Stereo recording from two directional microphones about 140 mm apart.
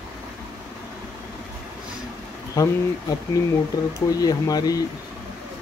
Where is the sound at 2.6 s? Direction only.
30° left (ahead or behind).